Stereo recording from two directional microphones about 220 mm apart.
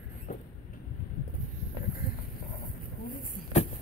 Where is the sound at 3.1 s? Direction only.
40° left (ahead or behind).